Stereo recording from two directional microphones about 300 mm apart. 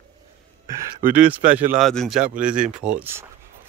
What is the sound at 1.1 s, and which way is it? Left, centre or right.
Speech, centre.